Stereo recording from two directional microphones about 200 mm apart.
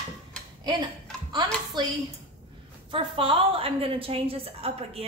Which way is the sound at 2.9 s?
25° right (ahead or behind).